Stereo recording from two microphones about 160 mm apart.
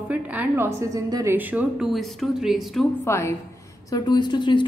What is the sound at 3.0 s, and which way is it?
A woman's voice, 15° left (ahead or behind).